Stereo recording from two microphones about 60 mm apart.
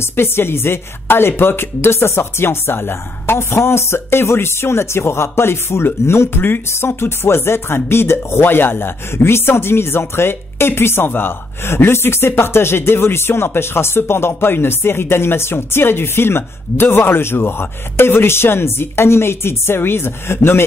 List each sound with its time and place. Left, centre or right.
0.0 s speech: left